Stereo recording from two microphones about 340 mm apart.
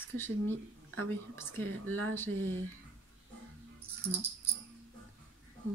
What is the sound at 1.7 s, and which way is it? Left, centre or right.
Speech, right.